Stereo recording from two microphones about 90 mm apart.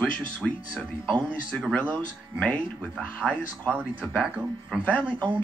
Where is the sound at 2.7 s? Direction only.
15° right (ahead or behind).